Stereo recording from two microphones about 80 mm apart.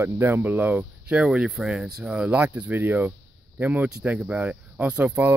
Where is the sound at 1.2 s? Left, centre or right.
Centre.